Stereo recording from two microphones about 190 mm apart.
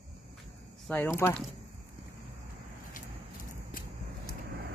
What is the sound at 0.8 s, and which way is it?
Speech, 10° left (ahead or behind).